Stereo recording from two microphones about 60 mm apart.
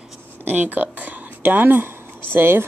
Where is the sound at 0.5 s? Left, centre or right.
Right.